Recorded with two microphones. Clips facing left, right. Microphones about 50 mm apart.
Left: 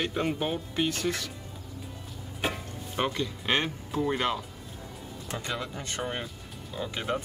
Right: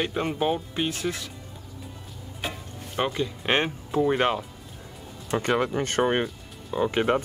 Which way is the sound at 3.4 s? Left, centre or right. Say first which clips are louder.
Right 4 dB; right.